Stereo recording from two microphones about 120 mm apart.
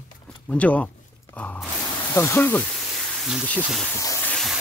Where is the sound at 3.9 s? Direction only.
25° left (ahead or behind).